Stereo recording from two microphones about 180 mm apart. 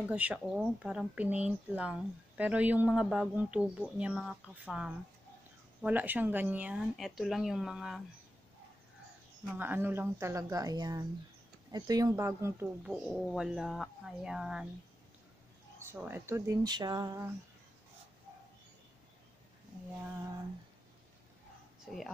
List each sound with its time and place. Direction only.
0.1 s speech: 5° right (ahead or behind)
9.5 s speech: 10° right (ahead or behind)
15.8 s speech: 15° right (ahead or behind)